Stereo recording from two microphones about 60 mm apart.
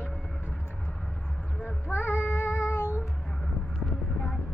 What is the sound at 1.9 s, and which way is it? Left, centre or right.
Child singing, left.